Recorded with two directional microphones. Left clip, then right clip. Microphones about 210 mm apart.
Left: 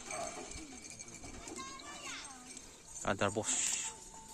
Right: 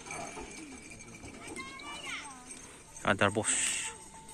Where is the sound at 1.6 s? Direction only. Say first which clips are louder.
Right 5 dB; 55° left (ahead or behind).